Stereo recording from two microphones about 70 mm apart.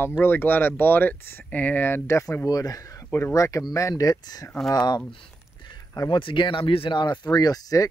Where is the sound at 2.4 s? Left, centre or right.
Left.